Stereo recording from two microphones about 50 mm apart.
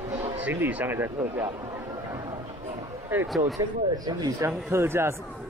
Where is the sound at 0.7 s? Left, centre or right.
Right.